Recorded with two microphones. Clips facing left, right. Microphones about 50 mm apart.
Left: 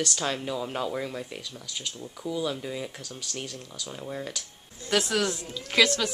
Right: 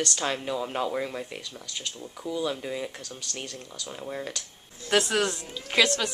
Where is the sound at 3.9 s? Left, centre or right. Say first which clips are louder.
Right 1 dB; centre.